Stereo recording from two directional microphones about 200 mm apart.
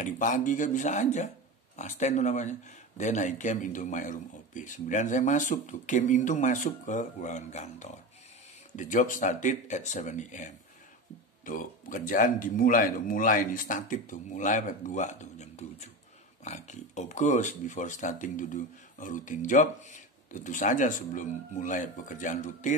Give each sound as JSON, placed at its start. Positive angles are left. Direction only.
{"t": 0.0, "sound": "speech", "side_deg": 40}